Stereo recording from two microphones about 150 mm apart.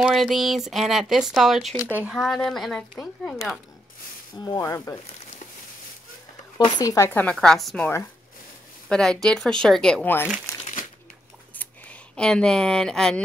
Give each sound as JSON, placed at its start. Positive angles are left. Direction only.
{"t": 0.0, "sound": "speech", "side_deg": 0}
{"t": 1.8, "sound": "speech", "side_deg": -15}
{"t": 2.0, "sound": "speech", "side_deg": 0}
{"t": 4.5, "sound": "speech", "side_deg": 20}
{"t": 6.6, "sound": "speech", "side_deg": 30}
{"t": 7.3, "sound": "speech", "side_deg": 0}
{"t": 8.8, "sound": "speech", "side_deg": 5}
{"t": 11.5, "sound": "a sound", "side_deg": 10}